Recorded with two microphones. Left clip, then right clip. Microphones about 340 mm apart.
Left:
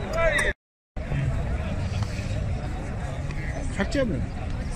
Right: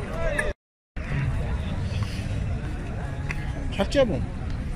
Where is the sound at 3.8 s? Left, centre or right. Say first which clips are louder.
Right 5 dB; centre.